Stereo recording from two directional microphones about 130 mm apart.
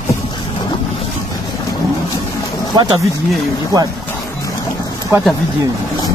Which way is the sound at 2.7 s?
30° right (ahead or behind).